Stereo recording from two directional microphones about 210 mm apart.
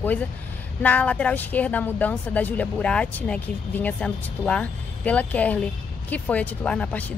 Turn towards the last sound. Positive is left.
turn(degrees=5)  # may be behind; listen again after turning